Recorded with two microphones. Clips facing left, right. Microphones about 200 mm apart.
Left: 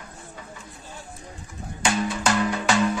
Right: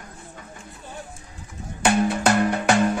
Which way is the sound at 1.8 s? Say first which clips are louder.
Right 5 dB; 60° right (ahead or behind).